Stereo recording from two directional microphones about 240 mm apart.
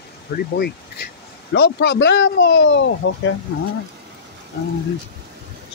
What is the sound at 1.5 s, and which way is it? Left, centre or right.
Speech, left.